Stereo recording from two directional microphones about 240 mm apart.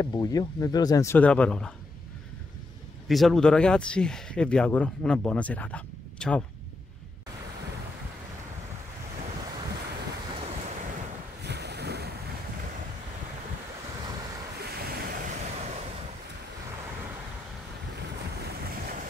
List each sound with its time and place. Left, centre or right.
0.0 s speech: centre
3.1 s speech: centre
10.3 s waves: right
11.4 s waves: right
14.6 s waves: right
18.4 s waves: right